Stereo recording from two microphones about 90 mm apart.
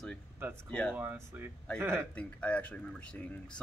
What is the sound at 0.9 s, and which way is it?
Speech, 20° right (ahead or behind).